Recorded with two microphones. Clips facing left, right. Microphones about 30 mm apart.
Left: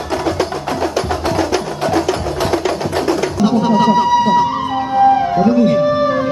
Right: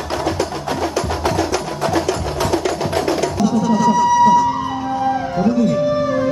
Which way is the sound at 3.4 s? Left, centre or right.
Left.